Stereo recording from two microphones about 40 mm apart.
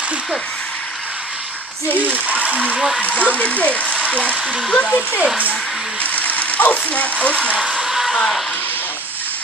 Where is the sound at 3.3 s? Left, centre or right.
Left.